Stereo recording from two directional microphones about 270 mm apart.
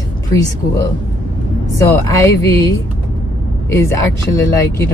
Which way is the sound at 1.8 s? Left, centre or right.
Centre.